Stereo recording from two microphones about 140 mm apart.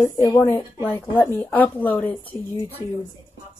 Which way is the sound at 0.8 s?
15° left (ahead or behind).